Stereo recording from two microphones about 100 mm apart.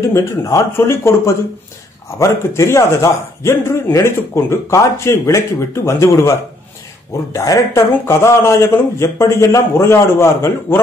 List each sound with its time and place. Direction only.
0.1 s a man's voice: 30° left (ahead or behind)
7.3 s a man's voice: 35° left (ahead or behind)